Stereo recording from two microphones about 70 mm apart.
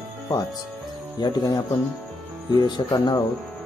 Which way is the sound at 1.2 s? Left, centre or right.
Left.